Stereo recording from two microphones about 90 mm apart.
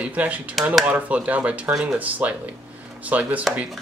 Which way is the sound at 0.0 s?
15° right (ahead or behind).